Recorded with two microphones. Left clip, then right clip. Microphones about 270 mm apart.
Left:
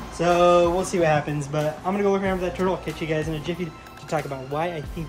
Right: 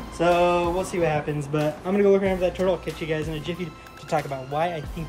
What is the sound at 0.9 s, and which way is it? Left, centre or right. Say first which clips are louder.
Speech: left 3 dB; centre.